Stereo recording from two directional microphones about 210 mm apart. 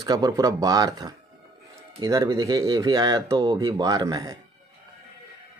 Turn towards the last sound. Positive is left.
turn(degrees=-20)  # may be behind; listen again after turning